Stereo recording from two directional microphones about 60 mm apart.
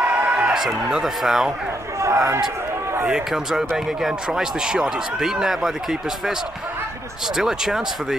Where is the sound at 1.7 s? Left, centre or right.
Right.